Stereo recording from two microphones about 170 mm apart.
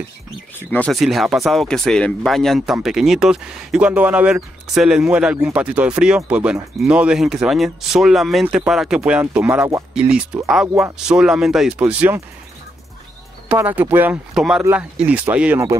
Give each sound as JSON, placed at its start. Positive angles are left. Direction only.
{"t": 0.6, "sound": "speech", "side_deg": 10}
{"t": 13.5, "sound": "speech", "side_deg": -10}